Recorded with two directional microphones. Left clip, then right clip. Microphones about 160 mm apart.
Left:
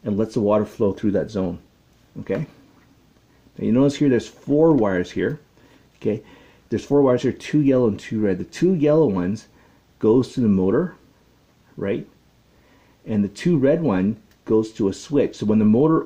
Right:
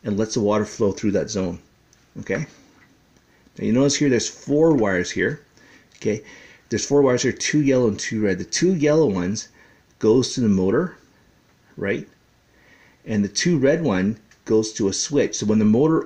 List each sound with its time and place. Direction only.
0.0 s speech: 15° right (ahead or behind)
3.5 s speech: 15° right (ahead or behind)
13.0 s speech: 15° right (ahead or behind)